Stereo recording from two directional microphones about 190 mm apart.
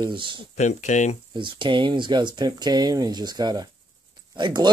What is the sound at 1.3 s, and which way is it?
Speech, 25° right (ahead or behind).